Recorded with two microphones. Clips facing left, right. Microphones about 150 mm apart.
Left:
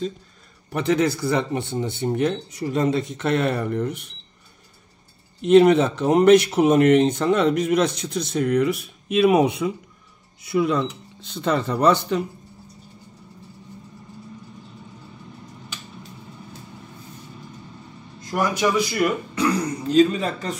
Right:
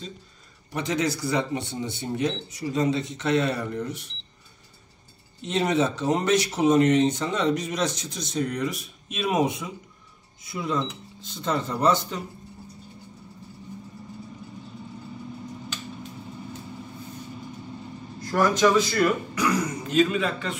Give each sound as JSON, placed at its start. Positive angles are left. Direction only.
{"t": 0.7, "sound": "speech", "side_deg": 55}
{"t": 5.4, "sound": "speech", "side_deg": 60}
{"t": 18.2, "sound": "speech", "side_deg": 15}
{"t": 19.3, "sound": "speech", "side_deg": 30}